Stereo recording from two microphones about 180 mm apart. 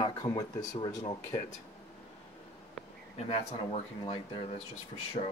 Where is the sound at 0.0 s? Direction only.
20° left (ahead or behind).